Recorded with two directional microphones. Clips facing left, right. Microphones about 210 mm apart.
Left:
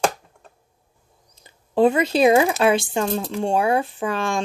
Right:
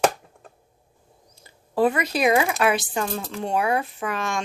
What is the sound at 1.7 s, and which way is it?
Speech, 25° left (ahead or behind).